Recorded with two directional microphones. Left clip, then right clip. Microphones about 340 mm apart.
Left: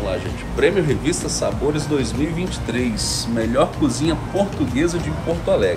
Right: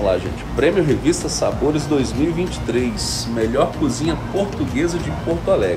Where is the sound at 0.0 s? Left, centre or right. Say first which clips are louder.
Right 5 dB; centre.